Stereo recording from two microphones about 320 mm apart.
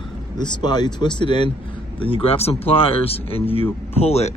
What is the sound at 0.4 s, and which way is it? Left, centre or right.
Speech, centre.